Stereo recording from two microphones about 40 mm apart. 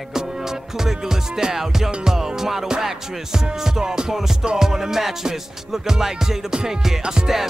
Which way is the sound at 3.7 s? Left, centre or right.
Centre.